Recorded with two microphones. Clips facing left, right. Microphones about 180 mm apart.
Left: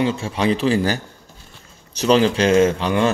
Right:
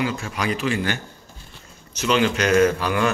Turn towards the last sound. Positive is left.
turn(degrees=25)  # may be behind; listen again after turning